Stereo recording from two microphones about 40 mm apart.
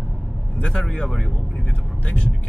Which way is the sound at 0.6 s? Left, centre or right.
Left.